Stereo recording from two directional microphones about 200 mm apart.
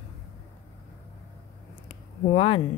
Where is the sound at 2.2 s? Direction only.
30° left (ahead or behind).